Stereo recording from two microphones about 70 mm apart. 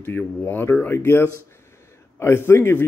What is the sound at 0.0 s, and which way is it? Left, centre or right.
Speech, left.